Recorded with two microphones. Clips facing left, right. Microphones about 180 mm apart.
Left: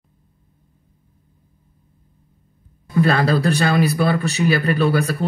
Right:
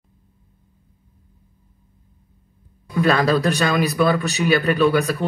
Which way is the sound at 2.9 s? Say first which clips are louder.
Even; 30° left (ahead or behind).